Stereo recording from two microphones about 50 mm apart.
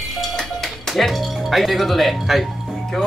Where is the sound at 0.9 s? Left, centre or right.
Centre.